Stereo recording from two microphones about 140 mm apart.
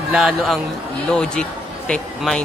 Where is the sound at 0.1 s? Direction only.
Centre (ahead or behind).